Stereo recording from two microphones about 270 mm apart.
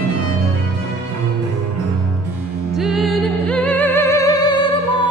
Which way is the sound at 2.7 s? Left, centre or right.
Centre.